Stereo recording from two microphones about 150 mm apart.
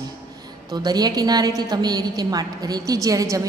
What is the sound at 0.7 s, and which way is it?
A woman's voice, 25° right (ahead or behind).